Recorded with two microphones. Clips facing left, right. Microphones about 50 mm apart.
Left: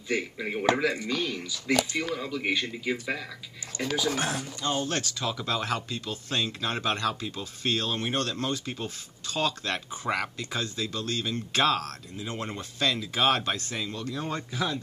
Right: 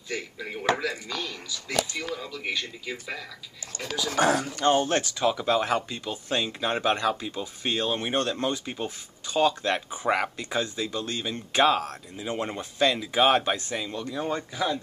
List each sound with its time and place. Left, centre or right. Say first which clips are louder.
0.1 s speech: left 4 dB; centre
3.7 s speech: left 5 dB; right
4.6 s speech: right 7 dB; right; by 14.8 s centre